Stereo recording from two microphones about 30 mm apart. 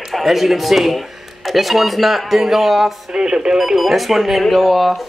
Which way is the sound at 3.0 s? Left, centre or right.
Right.